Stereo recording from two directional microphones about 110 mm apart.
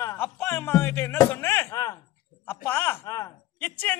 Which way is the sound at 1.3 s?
20° left (ahead or behind).